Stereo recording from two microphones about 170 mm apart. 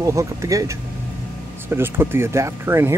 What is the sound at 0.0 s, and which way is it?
Speech, 20° right (ahead or behind).